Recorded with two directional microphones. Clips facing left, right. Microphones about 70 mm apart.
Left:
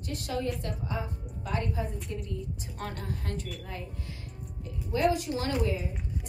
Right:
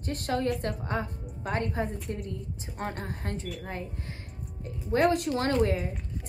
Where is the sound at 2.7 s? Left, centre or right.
Right.